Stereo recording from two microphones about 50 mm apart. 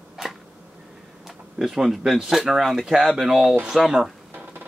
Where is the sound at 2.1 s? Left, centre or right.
Centre.